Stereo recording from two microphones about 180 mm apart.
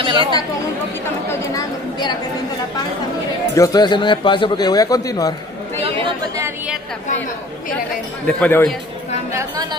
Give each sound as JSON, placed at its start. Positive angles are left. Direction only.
{"t": 0.0, "sound": "chatter", "side_deg": -25}
{"t": 1.3, "sound": "chatter", "side_deg": 15}
{"t": 3.5, "sound": "a man's voice", "side_deg": 20}
{"t": 8.3, "sound": "speech", "side_deg": 10}
{"t": 9.3, "sound": "speech", "side_deg": -15}